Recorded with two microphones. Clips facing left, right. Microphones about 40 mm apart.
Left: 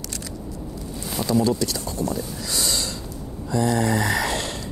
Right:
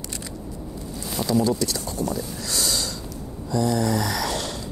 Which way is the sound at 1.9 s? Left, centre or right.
Centre.